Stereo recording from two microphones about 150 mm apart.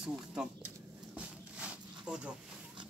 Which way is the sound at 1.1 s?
5° right (ahead or behind).